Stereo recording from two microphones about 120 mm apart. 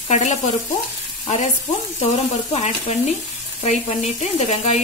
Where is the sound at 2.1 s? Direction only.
65° left (ahead or behind).